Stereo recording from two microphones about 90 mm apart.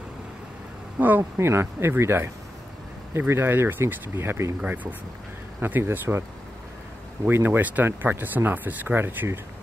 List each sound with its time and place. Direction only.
0.9 s speech: 20° right (ahead or behind)
7.2 s speech: 25° right (ahead or behind)